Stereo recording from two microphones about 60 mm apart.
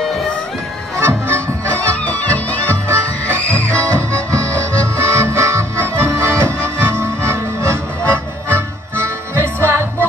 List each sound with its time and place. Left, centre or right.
0.0 s music: centre
0.9 s music: right
2.0 s music: left
4.3 s music: right
4.9 s accordion: right
6.8 s music: right
9.7 s music: right